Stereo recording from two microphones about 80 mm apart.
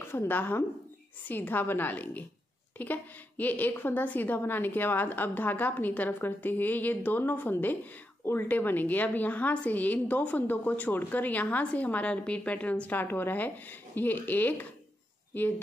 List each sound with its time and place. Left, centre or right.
0.0 s a woman's voice: left